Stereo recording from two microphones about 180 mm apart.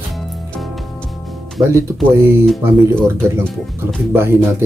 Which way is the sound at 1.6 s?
15° right (ahead or behind).